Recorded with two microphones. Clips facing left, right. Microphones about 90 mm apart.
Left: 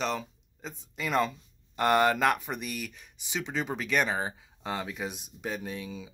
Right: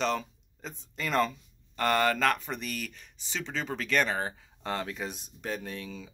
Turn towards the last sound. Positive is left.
turn(degrees=10)  # may be behind; listen again after turning